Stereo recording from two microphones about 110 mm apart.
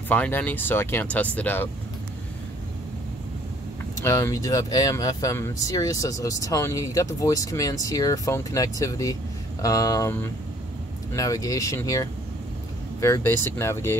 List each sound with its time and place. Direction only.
0.1 s speech: 15° left (ahead or behind)
4.0 s speech: 25° left (ahead or behind)
11.1 s speech: 30° left (ahead or behind)